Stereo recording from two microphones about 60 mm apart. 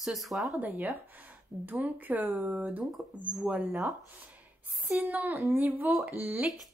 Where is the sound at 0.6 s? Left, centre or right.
Right.